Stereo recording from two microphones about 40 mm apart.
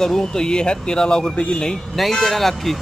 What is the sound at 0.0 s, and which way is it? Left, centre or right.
Speech, centre.